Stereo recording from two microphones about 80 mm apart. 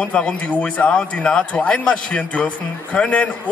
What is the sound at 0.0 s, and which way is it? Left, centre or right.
Speech, centre.